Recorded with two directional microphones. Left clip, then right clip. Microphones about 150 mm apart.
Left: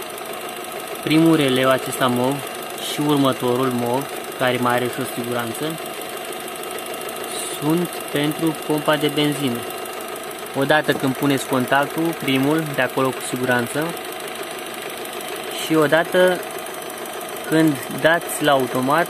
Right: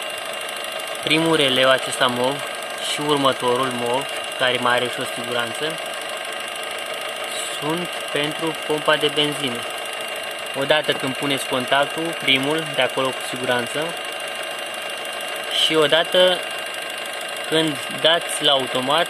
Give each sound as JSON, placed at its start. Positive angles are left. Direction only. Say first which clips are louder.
{"t": 1.0, "sound": "speech", "louder": "left 1 dB", "side_deg": 15}
{"t": 8.8, "sound": "speech", "louder": "right 1 dB", "side_deg": 20}
{"t": 10.7, "sound": "speech", "louder": "left 1 dB", "side_deg": 30}
{"t": 15.7, "sound": "speech", "louder": "left 2 dB", "side_deg": 10}
{"t": 17.6, "sound": "speech", "louder": "left 2 dB", "side_deg": 15}